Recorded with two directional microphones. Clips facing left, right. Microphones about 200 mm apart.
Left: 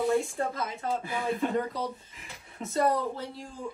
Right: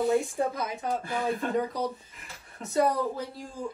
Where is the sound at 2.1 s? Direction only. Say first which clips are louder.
Even; centre (ahead or behind).